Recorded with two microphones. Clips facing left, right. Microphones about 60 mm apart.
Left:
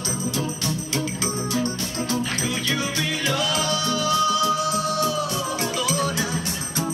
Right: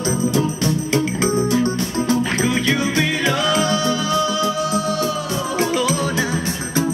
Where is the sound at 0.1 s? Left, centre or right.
Right.